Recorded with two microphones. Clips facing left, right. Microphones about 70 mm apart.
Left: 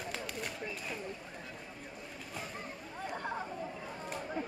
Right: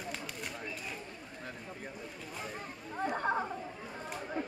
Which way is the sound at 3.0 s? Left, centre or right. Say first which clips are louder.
Right 7 dB; right.